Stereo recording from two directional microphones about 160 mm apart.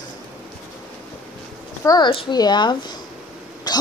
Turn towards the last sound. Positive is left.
turn(degrees=25)  # may be behind; listen again after turning